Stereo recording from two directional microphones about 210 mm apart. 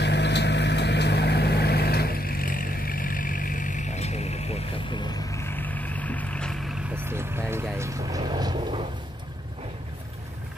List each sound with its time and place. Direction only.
0.0 s vehicle: 55° left (ahead or behind); by 6.8 s centre (ahead or behind)
7.0 s vehicle: 10° right (ahead or behind)